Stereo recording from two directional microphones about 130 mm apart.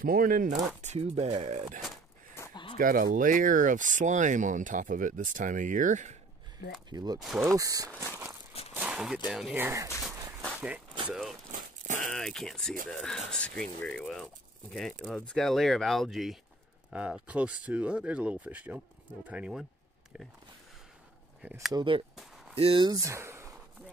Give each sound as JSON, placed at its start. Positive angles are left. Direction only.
{"t": 0.0, "sound": "speech", "side_deg": -90}
{"t": 0.8, "sound": "speech", "side_deg": -60}
{"t": 2.8, "sound": "speech", "side_deg": -90}
{"t": 6.9, "sound": "speech", "side_deg": -30}
{"t": 7.2, "sound": "speech", "side_deg": 0}
{"t": 7.5, "sound": "speech", "side_deg": -25}
{"t": 8.7, "sound": "a sound", "side_deg": -5}
{"t": 9.3, "sound": "speech", "side_deg": -5}
{"t": 9.6, "sound": "speech", "side_deg": -20}
{"t": 11.1, "sound": "speech", "side_deg": 0}
{"t": 11.5, "sound": "a sound", "side_deg": -90}
{"t": 12.1, "sound": "speech", "side_deg": 5}
{"t": 21.7, "sound": "speech", "side_deg": -40}